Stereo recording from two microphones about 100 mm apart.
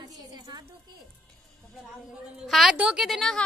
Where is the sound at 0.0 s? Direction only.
40° right (ahead or behind).